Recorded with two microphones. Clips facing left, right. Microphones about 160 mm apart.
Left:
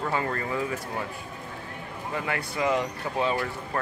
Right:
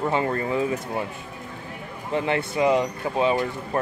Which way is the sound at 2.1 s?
25° right (ahead or behind).